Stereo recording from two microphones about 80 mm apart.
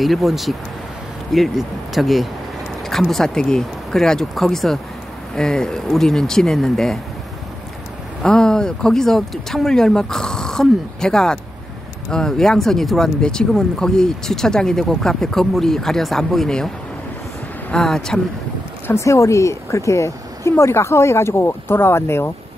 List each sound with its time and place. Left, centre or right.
0.0 s speech: centre
8.2 s speech: centre
17.8 s speech: centre
18.9 s speech: left